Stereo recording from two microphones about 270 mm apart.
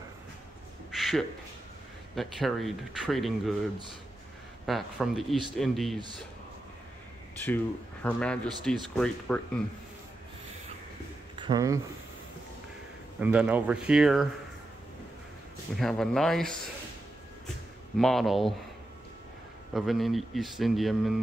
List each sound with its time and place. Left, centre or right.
0.9 s a sound: centre
2.1 s speech: centre
4.6 s speech: centre
5.9 s speech: centre
7.4 s speech: centre
11.3 s speech: centre
13.2 s speech: centre
15.7 s speech: centre
17.9 s speech: centre
19.7 s speech: centre